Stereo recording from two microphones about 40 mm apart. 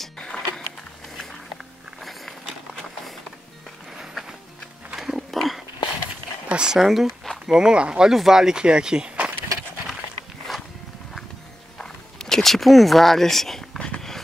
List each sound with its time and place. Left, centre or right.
0.2 s music: centre
2.0 s walk: centre
3.9 s music: centre
4.9 s pig: centre
5.3 s a sound: centre
6.5 s speech: centre
7.7 s speech: right
8.1 s speech: centre; by 9.3 s right
11.8 s speech: centre
13.7 s a sound: centre